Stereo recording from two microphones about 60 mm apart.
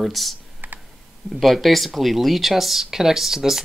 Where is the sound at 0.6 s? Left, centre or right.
Right.